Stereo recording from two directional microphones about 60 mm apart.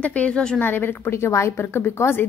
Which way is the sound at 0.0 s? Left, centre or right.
Left.